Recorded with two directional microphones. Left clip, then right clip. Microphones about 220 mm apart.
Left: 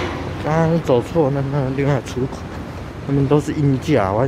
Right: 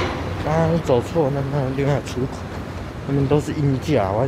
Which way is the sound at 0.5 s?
10° left (ahead or behind).